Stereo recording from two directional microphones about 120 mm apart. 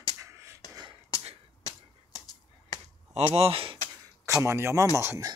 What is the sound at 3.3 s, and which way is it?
Speech, 50° right (ahead or behind).